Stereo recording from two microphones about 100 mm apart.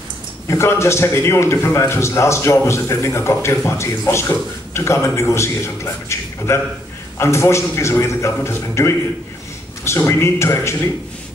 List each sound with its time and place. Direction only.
0.5 s a man's voice: 25° left (ahead or behind)